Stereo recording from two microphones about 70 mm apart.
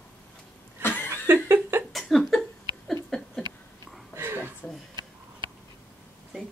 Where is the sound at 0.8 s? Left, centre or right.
Left.